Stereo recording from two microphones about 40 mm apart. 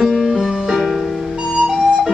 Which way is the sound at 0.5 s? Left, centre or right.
Centre.